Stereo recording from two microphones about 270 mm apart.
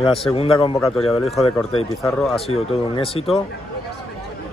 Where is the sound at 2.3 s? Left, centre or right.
Left.